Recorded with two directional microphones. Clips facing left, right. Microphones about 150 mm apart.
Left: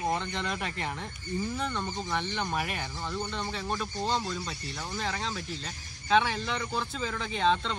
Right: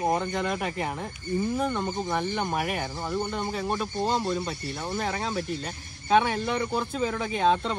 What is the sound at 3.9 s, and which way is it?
Speech, 50° right (ahead or behind).